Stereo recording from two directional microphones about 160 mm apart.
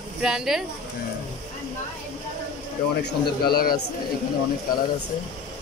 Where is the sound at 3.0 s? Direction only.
75° left (ahead or behind).